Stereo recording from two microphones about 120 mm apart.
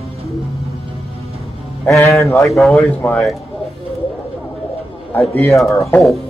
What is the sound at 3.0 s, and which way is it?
Speech, 15° left (ahead or behind).